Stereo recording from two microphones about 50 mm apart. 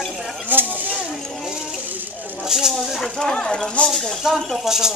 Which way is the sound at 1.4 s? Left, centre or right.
Centre.